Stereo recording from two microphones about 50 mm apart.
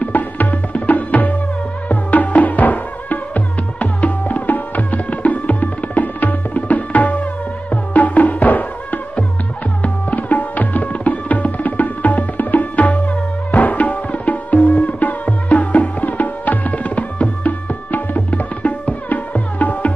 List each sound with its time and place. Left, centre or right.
0.0 s tabla: left
1.9 s music: left
9.8 s tabla: left